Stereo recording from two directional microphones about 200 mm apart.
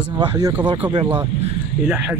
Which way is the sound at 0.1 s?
25° right (ahead or behind).